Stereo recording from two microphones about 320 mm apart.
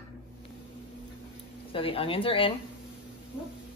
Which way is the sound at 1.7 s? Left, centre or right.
Centre.